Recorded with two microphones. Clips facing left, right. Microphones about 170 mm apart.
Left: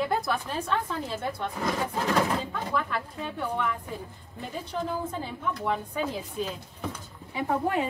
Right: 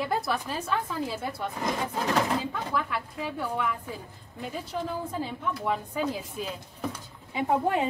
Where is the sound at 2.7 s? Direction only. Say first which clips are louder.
Left 3 dB; 5° right (ahead or behind).